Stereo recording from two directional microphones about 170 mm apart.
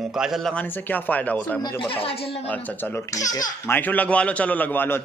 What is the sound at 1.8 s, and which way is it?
Speech, 30° left (ahead or behind).